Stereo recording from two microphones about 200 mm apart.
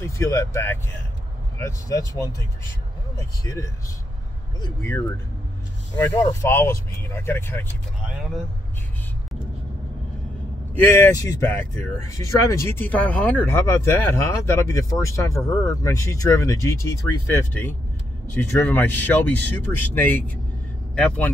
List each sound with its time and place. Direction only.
0.0 s speech: 15° left (ahead or behind)
6.0 s speech: 15° left (ahead or behind)
8.1 s speech: centre (ahead or behind)
11.1 s speech: 15° left (ahead or behind)